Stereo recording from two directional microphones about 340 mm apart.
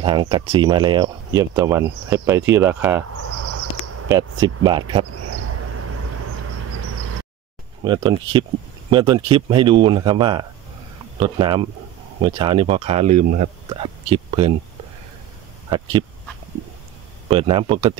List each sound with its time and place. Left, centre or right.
0.0 s speech: centre
4.1 s speech: centre
7.8 s speech: centre
15.7 s speech: centre
17.3 s speech: centre